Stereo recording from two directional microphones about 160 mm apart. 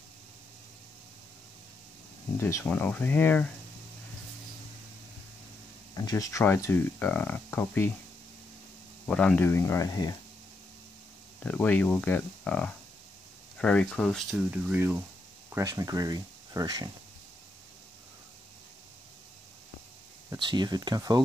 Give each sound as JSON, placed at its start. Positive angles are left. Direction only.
{"t": 2.3, "sound": "speech", "side_deg": 15}
{"t": 5.9, "sound": "speech", "side_deg": 20}
{"t": 9.0, "sound": "speech", "side_deg": 10}
{"t": 11.3, "sound": "speech", "side_deg": 10}
{"t": 14.3, "sound": "speech", "side_deg": -10}
{"t": 15.5, "sound": "speech", "side_deg": -20}
{"t": 20.3, "sound": "speech", "side_deg": -30}